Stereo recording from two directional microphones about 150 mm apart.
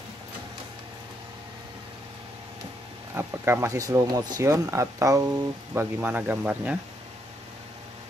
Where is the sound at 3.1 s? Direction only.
15° right (ahead or behind).